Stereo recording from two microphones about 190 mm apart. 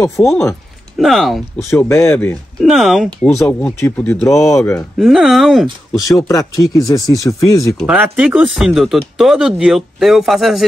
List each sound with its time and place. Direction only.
0.2 s speech: centre (ahead or behind)
1.6 s speech: 15° left (ahead or behind)
2.6 s speech: centre (ahead or behind)
3.3 s speech: 10° left (ahead or behind)
4.7 s speech: centre (ahead or behind)
6.2 s speech: 20° left (ahead or behind)
7.8 s speech: 5° right (ahead or behind)